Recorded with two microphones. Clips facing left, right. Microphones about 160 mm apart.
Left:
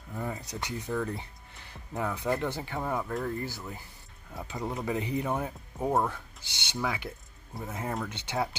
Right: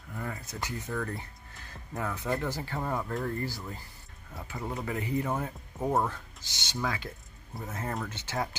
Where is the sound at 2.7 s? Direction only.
Centre (ahead or behind).